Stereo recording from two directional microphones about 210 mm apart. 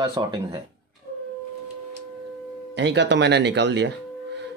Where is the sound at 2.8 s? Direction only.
55° right (ahead or behind).